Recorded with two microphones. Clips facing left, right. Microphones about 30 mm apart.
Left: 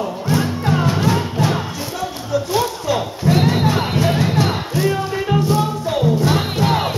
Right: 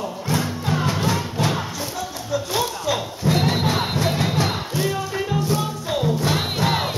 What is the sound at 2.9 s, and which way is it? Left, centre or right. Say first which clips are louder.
Music: left 5 dB; left.